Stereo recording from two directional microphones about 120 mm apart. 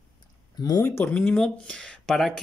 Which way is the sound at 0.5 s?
35° left (ahead or behind).